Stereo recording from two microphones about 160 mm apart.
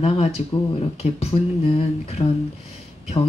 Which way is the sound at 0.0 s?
40° left (ahead or behind).